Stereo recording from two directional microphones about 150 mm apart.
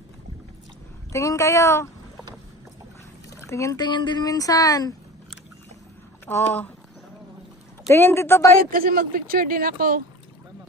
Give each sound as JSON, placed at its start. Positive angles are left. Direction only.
{"t": 1.1, "sound": "speech", "side_deg": 20}
{"t": 3.3, "sound": "speech", "side_deg": 20}
{"t": 6.2, "sound": "a woman's voice", "side_deg": 10}
{"t": 7.9, "sound": "a woman's voice", "side_deg": 15}
{"t": 8.7, "sound": "speech", "side_deg": -75}